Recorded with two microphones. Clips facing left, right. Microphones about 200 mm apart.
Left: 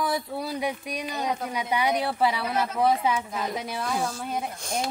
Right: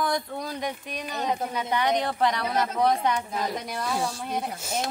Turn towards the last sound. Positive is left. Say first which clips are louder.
# even
turn(degrees=-5)  # may be behind; listen again after turning